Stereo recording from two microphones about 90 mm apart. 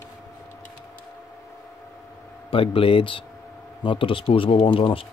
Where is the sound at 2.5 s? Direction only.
90° left; by 5.0 s 75° left (ahead or behind).